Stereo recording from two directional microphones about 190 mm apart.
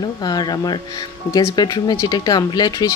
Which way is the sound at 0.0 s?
20° left (ahead or behind).